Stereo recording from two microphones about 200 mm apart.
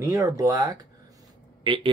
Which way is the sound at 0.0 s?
15° right (ahead or behind).